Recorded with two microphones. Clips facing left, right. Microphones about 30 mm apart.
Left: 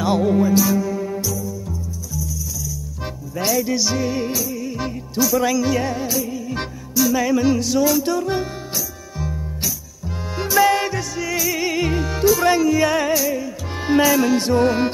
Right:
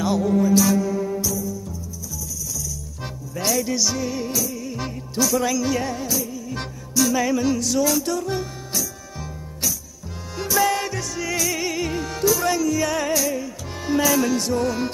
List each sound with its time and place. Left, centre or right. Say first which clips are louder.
0.1 s music: left 3 dB; left
0.6 s music: left 1 dB; centre
3.4 s music: left 2 dB; centre
7.0 s music: left 2 dB; centre
7.4 s music: left 3 dB; centre
10.3 s music: left 4 dB; centre
11.6 s music: left 4 dB; centre
13.0 s music: left 3 dB; centre
14.3 s music: left 5 dB; left